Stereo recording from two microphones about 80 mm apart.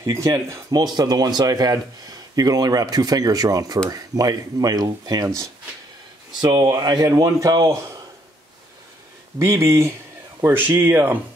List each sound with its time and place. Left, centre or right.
0.0 s speech: right
0.9 s speech: right
6.6 s speech: right
7.1 s speech: right
9.4 s speech: right